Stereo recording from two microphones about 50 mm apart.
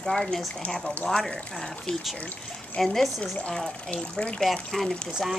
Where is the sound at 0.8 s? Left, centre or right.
Left.